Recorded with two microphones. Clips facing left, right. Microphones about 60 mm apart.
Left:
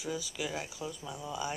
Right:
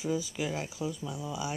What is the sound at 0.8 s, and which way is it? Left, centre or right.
Speech, centre.